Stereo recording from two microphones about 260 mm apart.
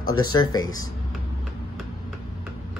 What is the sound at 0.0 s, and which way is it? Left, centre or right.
Speech, left.